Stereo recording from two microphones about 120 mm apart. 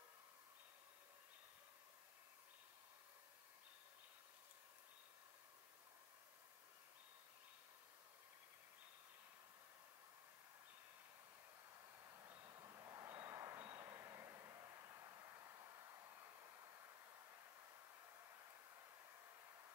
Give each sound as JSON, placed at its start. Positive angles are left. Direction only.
{"t": 12.4, "sound": "vehicle", "side_deg": -30}